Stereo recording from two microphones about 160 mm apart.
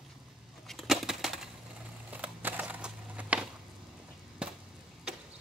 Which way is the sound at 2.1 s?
10° right (ahead or behind).